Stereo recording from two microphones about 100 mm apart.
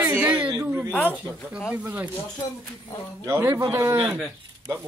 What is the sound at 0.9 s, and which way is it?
Speech, 15° left (ahead or behind).